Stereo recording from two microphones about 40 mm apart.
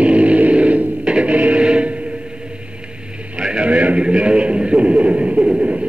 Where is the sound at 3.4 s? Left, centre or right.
Right.